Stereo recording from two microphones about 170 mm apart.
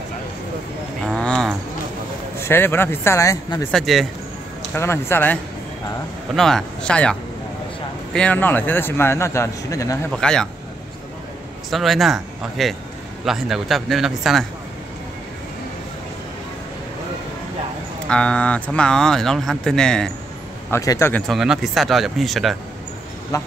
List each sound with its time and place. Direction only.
1.0 s a sound: 5° left (ahead or behind)
2.4 s a man's voice: 15° left (ahead or behind)
3.7 s speech: centre (ahead or behind)
4.7 s a man's voice: 15° left (ahead or behind)
10.1 s speech: 5° left (ahead or behind)
11.7 s speech: centre (ahead or behind)
18.0 s speech: 5° left (ahead or behind)
20.7 s a man's voice: 15° left (ahead or behind)
21.3 s speech: centre (ahead or behind)
23.3 s speech: 20° left (ahead or behind)